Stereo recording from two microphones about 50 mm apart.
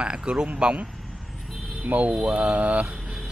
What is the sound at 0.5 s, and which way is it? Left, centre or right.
Speech, right.